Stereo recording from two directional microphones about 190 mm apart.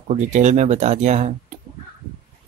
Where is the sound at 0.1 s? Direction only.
35° right (ahead or behind).